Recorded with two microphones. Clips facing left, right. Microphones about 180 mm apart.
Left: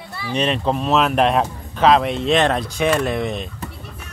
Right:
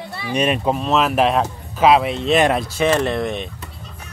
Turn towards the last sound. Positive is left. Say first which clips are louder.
# right 1 dB
turn(degrees=0)  # may be behind; listen again after turning